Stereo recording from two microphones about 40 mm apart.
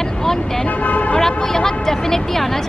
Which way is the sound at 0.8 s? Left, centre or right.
Left.